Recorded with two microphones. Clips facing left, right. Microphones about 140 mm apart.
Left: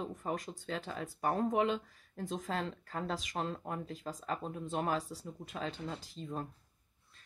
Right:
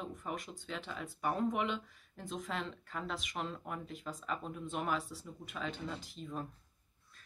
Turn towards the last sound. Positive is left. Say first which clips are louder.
# left 1 dB
turn(degrees=30)  # may be behind; listen again after turning